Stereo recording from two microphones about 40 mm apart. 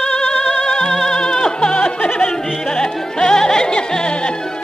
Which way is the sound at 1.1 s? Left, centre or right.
Centre.